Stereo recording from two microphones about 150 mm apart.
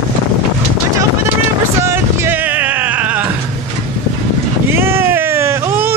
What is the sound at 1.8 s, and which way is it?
Music, 20° right (ahead or behind).